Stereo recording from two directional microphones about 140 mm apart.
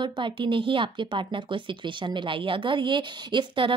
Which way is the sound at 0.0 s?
35° right (ahead or behind).